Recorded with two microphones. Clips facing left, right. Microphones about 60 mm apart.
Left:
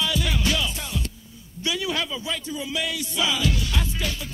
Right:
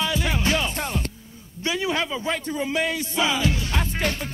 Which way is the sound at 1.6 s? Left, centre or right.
Right.